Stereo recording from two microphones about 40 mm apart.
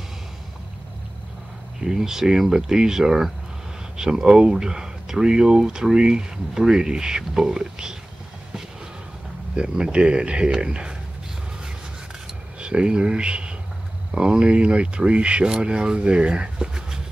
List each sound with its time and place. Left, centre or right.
1.8 s speech: centre
9.6 s speech: right
12.5 s speech: right